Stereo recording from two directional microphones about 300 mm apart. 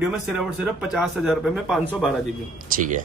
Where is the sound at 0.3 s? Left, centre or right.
Centre.